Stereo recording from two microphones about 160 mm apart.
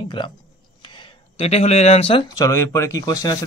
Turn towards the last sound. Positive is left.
turn(degrees=25)  # may be behind; listen again after turning